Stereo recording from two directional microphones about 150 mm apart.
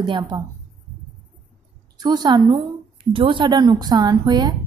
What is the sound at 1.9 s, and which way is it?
A woman's voice, 25° right (ahead or behind).